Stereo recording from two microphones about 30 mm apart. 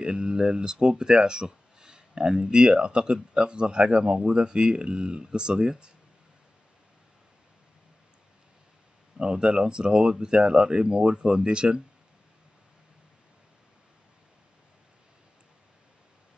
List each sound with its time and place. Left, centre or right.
0.0 s speech: right
9.2 s speech: right